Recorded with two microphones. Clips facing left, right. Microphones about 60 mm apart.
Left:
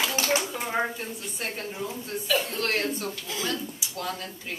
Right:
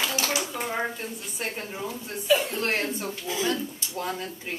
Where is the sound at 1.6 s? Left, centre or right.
Centre.